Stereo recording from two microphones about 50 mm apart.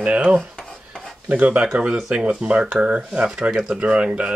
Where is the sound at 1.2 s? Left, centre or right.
Right.